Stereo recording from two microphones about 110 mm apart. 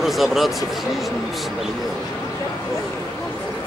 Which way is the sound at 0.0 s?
Centre (ahead or behind).